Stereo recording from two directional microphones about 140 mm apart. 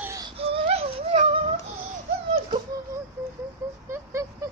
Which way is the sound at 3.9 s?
20° right (ahead or behind).